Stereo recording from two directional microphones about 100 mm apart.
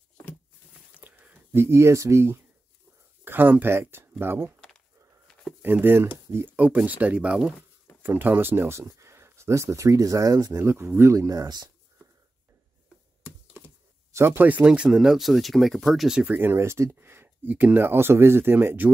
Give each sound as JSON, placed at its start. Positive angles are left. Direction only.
{"t": 0.9, "sound": "a sound", "side_deg": -15}
{"t": 3.3, "sound": "speech", "side_deg": -20}
{"t": 4.6, "sound": "a sound", "side_deg": 5}
{"t": 5.6, "sound": "speech", "side_deg": -20}
{"t": 10.6, "sound": "speech", "side_deg": -25}
{"t": 14.1, "sound": "speech", "side_deg": -20}
{"t": 16.3, "sound": "speech", "side_deg": -25}